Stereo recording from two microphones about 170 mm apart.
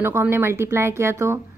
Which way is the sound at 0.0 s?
15° right (ahead or behind).